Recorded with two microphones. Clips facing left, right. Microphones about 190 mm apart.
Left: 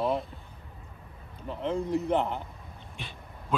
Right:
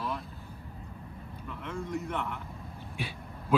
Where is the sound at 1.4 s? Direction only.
35° left (ahead or behind).